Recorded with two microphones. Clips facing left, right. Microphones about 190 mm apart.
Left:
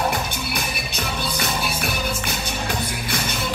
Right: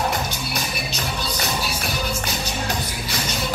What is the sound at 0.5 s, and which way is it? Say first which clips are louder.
Music: even; 55° left (ahead or behind).